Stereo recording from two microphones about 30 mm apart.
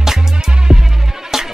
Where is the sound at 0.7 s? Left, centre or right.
Right.